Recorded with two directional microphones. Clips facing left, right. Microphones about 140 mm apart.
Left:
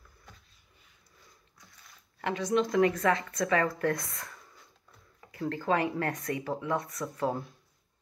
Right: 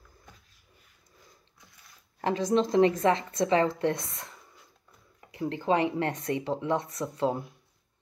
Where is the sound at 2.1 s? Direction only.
30° right (ahead or behind).